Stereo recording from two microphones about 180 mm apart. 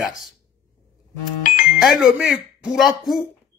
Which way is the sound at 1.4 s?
45° left (ahead or behind).